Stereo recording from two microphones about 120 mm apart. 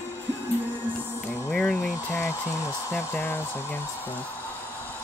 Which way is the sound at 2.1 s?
20° left (ahead or behind).